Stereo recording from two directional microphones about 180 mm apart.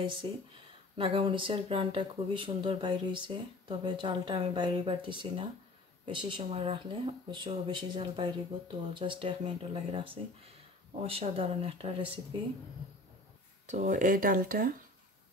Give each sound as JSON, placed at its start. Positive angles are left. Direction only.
{"t": 0.2, "sound": "speech", "side_deg": -30}
{"t": 13.7, "sound": "speech", "side_deg": -40}